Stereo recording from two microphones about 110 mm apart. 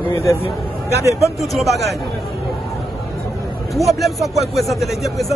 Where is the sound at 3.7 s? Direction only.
Centre (ahead or behind).